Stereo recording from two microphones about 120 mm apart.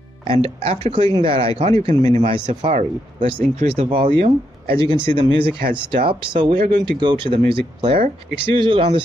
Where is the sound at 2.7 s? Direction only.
80° right.